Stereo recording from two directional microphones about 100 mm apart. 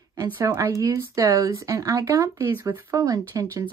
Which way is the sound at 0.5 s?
25° right (ahead or behind).